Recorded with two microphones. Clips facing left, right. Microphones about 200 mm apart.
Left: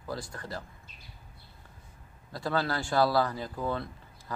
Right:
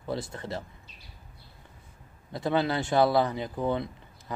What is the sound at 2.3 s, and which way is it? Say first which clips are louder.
Speech: right 4 dB; 20° right (ahead or behind).